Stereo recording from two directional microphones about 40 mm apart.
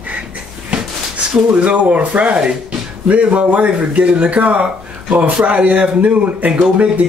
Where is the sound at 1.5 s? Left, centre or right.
Right.